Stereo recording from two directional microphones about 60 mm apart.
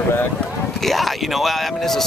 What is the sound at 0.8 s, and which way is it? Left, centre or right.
Speech, centre.